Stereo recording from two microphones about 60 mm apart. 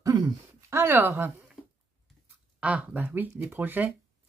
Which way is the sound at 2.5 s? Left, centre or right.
Right.